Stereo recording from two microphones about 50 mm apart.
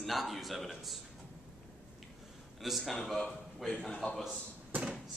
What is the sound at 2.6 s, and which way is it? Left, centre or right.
A man's voice, centre.